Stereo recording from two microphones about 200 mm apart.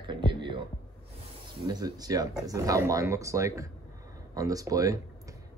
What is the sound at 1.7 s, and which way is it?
Speech, 20° right (ahead or behind).